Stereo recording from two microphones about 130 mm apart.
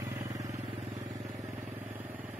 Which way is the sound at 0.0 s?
25° right (ahead or behind).